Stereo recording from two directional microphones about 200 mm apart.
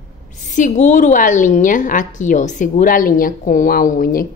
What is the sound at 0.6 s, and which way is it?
A woman's voice, 40° left (ahead or behind).